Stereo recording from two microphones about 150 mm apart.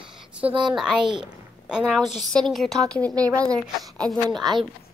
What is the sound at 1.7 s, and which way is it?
Speech, centre (ahead or behind).